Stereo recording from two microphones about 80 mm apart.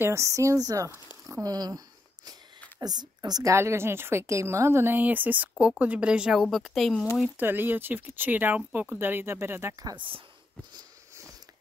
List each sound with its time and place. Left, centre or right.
0.0 s speech: right
1.4 s speech: right
2.8 s a woman's voice: right
3.5 s speech: right; by 6.4 s centre
6.4 s speech: centre
7.3 s speech: right